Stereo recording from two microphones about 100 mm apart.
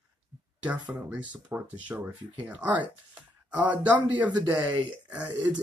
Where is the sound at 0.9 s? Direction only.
15° right (ahead or behind).